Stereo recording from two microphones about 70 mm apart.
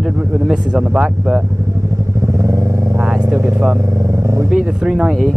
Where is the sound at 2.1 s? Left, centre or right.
Right.